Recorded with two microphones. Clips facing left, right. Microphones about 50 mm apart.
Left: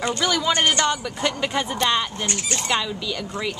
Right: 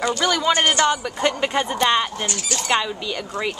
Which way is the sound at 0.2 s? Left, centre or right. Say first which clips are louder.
Right 1 dB; centre.